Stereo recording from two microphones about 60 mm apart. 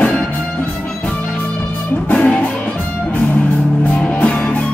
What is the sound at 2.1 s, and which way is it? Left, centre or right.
Music, centre.